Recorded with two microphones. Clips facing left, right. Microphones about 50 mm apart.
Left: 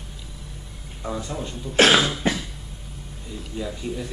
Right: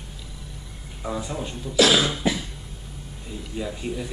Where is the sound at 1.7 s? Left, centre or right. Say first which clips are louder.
Left 2 dB; left.